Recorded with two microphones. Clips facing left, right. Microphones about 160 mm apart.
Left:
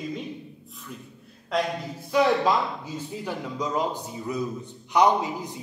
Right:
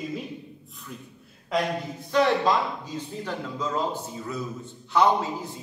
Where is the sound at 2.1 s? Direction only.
10° left (ahead or behind).